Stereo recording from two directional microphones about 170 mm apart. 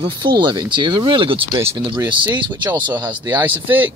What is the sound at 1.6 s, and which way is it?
Speech, 15° right (ahead or behind).